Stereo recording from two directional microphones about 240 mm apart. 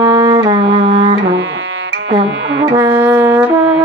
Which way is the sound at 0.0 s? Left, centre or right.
Centre.